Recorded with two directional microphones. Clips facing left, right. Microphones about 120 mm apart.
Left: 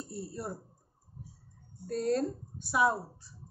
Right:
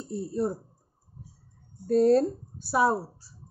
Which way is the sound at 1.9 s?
35° right (ahead or behind).